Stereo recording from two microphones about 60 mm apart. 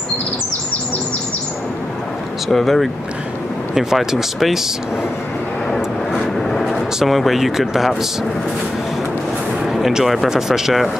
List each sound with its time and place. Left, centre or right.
2.4 s speech: centre
6.3 s vehicle: centre
7.0 s speech: centre
9.7 s speech: centre